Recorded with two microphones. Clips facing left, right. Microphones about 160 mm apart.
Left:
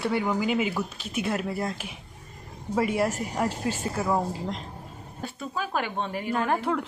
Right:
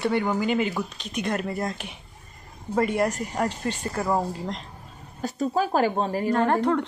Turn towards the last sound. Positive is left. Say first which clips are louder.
# right 4 dB
turn(degrees=5)  # may be behind; listen again after turning